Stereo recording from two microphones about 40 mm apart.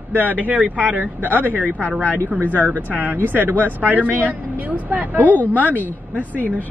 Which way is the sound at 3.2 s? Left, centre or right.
Right.